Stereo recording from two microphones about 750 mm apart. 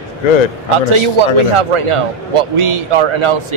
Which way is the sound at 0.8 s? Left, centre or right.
Right.